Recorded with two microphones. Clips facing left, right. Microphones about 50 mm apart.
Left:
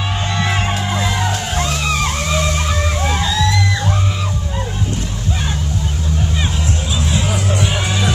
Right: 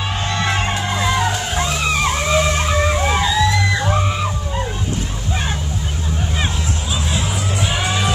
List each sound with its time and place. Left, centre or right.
0.2 s music: centre
7.2 s music: left
7.6 s music: right